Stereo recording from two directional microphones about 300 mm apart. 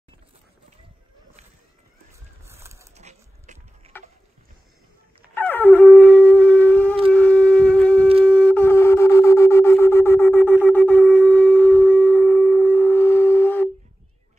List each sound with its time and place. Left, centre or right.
2.4 s a sound: centre
3.0 s dog: right
5.3 s wind instrument: centre
8.2 s shofar: centre